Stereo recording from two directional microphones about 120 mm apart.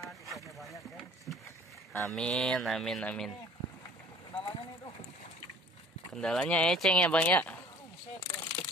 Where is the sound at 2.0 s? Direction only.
5° left (ahead or behind).